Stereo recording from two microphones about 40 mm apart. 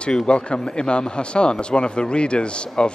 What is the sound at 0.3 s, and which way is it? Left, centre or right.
Speech, left.